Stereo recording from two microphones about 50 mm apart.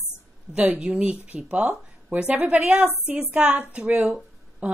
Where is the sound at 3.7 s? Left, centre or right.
Right.